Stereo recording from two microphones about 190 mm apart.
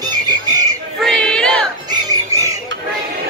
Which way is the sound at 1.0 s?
5° left (ahead or behind).